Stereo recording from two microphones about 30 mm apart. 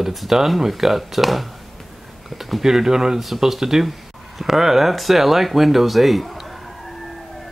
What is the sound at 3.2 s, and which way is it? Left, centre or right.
Speech, centre.